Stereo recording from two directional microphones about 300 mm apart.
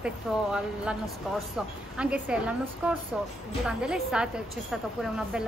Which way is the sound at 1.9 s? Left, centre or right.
Centre.